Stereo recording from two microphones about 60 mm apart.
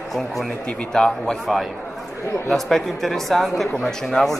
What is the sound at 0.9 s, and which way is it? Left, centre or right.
A man's voice, centre.